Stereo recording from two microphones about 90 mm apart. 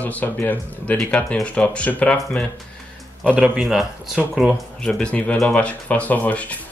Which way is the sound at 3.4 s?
Centre (ahead or behind).